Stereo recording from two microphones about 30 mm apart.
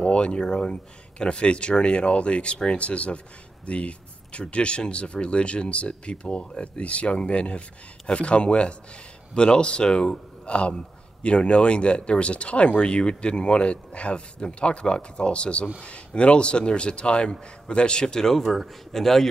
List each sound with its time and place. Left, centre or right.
0.0 s speech: left
6.8 s a man's voice: left
18.0 s speech: centre